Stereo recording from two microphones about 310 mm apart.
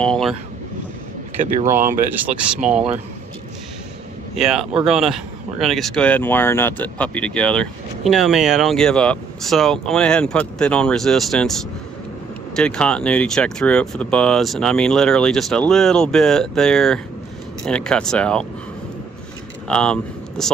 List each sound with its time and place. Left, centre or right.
0.0 s vehicle: centre
1.4 s speech: right
2.0 s speech: centre
4.4 s speech: centre
19.7 s speech: centre